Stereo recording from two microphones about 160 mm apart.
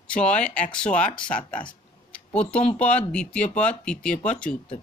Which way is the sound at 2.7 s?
10° left (ahead or behind).